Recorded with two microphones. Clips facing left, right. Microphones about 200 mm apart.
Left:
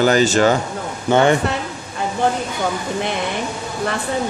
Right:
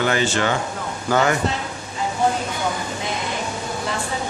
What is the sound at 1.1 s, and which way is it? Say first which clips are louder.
Speech: left 5 dB; 30° left (ahead or behind).